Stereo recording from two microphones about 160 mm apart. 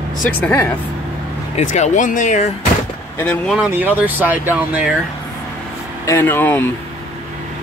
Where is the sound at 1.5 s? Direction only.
45° left (ahead or behind).